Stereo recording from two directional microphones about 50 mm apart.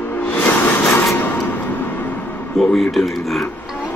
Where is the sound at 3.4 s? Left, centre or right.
Left.